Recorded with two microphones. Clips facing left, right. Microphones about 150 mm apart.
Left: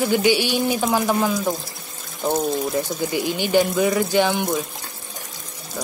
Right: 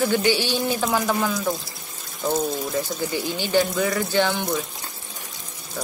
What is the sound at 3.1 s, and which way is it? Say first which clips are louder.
Speech: left 4 dB; 15° left (ahead or behind).